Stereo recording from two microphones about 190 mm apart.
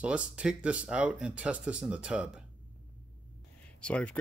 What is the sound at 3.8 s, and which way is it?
Speech, 5° left (ahead or behind).